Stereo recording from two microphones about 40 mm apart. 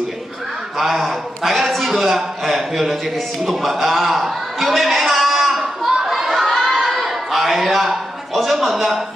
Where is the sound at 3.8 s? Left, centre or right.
Centre.